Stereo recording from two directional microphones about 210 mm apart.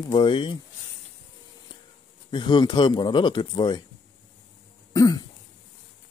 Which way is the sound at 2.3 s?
20° left (ahead or behind).